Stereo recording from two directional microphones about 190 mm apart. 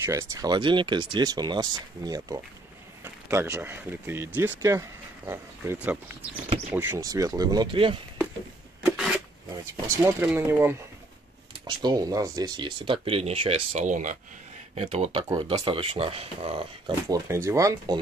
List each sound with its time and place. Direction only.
0.0 s speech: 15° right (ahead or behind)
8.8 s a sound: centre (ahead or behind)
9.5 s speech: 15° right (ahead or behind); by 15.2 s 30° right (ahead or behind)
15.2 s speech: 20° right (ahead or behind)